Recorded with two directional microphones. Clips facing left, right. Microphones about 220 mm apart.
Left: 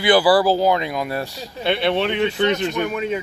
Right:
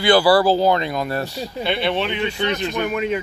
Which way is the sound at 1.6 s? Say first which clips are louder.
Left 2 dB; 55° left (ahead or behind).